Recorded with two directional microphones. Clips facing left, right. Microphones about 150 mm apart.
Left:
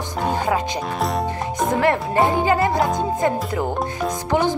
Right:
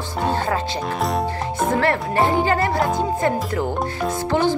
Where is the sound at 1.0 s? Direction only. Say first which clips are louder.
Even; centre (ahead or behind).